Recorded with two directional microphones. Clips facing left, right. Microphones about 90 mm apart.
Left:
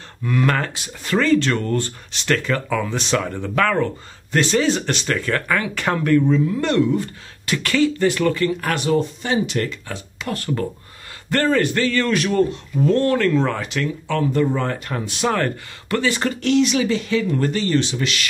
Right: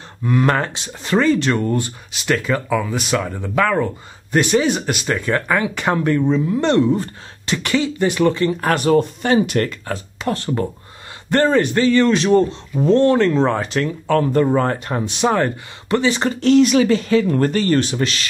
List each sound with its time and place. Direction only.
0.2 s speech: 25° right (ahead or behind)
7.5 s speech: 20° right (ahead or behind); by 10.3 s 45° right (ahead or behind)
10.3 s speech: 25° right (ahead or behind); by 14.8 s 40° right (ahead or behind)
14.9 s speech: 20° right (ahead or behind)
16.3 s speech: 40° right (ahead or behind)